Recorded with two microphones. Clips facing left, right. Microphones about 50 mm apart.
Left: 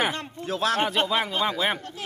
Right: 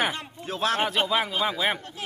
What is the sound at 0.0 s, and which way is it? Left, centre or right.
Speech, centre.